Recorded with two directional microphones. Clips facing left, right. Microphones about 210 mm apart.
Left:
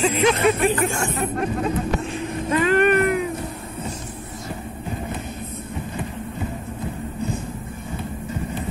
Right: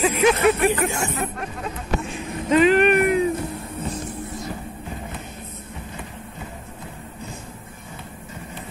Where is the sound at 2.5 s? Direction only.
15° right (ahead or behind).